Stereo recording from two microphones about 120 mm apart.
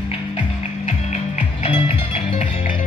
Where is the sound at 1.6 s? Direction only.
50° left (ahead or behind).